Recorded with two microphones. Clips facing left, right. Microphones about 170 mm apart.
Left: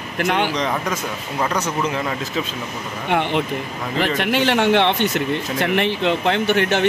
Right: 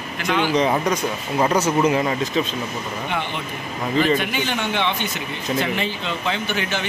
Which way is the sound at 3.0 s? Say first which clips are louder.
Left 11 dB; 70° left (ahead or behind).